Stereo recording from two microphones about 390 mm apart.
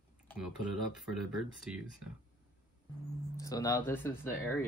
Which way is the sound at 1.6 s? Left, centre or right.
Centre.